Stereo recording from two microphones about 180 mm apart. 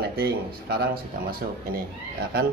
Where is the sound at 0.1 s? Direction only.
60° right (ahead or behind).